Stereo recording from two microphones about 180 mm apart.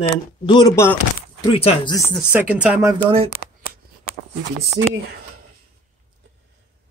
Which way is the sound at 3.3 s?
55° left (ahead or behind).